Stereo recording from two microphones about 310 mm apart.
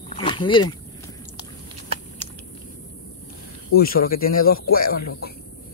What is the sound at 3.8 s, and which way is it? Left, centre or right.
Speech, left.